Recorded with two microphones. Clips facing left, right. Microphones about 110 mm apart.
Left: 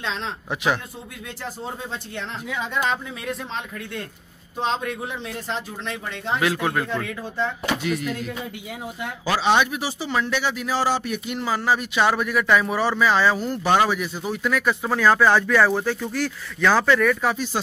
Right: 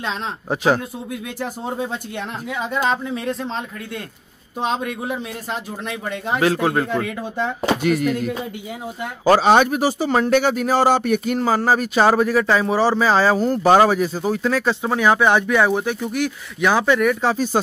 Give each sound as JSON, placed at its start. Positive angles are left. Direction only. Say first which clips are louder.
{"t": 4.6, "sound": "speech", "louder": "right 2 dB", "side_deg": -10}
{"t": 6.4, "sound": "speech", "louder": "right 6 dB", "side_deg": -30}
{"t": 7.8, "sound": "a sound", "louder": "right 7 dB", "side_deg": -60}
{"t": 9.2, "sound": "speech", "louder": "right 6 dB", "side_deg": -45}